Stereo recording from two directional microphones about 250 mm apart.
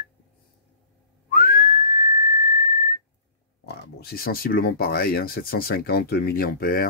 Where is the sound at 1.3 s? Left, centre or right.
Left.